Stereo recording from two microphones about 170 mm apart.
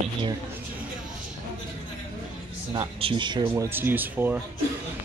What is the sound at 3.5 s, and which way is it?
Speech, 15° right (ahead or behind).